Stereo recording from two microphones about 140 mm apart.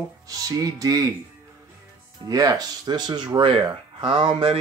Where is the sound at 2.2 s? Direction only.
25° right (ahead or behind).